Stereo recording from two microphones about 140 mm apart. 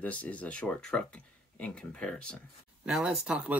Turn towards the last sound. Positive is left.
turn(degrees=-10)  # may be behind; listen again after turning